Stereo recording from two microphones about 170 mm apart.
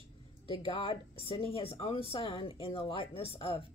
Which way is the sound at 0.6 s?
30° left (ahead or behind).